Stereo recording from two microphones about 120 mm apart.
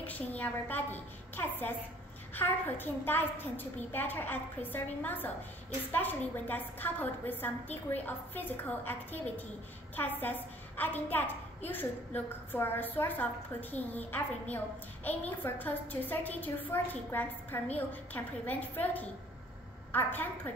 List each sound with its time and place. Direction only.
0.0 s a woman's voice: 15° left (ahead or behind)